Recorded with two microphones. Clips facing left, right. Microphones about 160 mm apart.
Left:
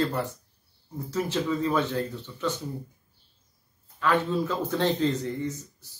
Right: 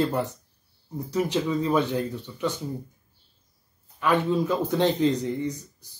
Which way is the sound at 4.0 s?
15° right (ahead or behind).